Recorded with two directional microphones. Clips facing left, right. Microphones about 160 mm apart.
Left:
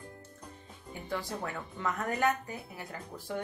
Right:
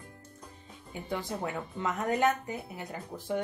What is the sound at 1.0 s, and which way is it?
Speech, 20° right (ahead or behind).